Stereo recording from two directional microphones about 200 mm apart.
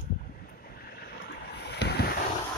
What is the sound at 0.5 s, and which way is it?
Boat, 50° left (ahead or behind).